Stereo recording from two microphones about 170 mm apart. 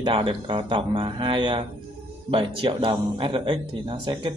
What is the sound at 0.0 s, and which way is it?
A man's voice, 30° right (ahead or behind).